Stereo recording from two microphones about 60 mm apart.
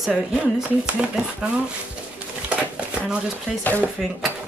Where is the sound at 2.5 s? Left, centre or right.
Centre.